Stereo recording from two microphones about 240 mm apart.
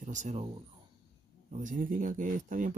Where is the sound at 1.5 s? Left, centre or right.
Right.